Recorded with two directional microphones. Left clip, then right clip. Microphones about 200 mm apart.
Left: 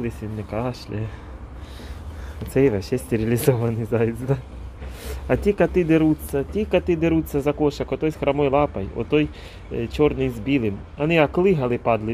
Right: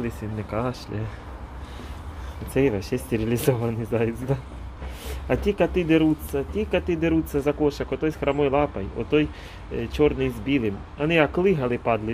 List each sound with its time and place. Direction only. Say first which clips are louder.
0.0 s speech: left 1 dB; 10° left (ahead or behind)
2.5 s speech: left 3 dB; 15° left (ahead or behind)